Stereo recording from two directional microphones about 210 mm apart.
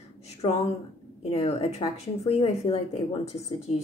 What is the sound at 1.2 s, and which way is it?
A woman's voice, 30° left (ahead or behind).